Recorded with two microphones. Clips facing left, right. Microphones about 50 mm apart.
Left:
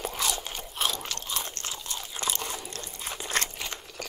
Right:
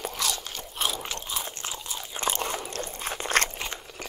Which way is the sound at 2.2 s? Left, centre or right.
Right.